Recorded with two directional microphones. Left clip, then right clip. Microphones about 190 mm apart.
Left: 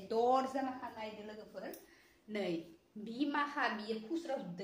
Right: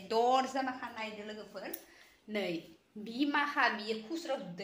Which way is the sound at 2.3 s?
30° right (ahead or behind).